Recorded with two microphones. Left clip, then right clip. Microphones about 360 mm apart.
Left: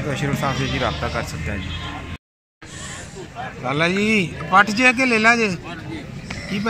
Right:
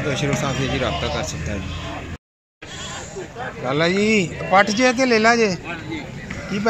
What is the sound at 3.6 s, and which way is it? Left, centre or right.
Speech, centre.